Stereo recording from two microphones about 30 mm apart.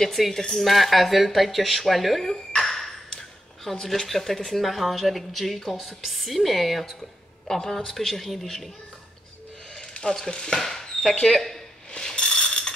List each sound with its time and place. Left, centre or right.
0.0 s speech: centre
2.2 s a sound: centre
4.0 s speech: centre
7.4 s speech: centre
10.0 s speech: centre
10.7 s a sound: centre
11.1 s speech: left
11.3 s speech: centre
12.0 s ratchet: left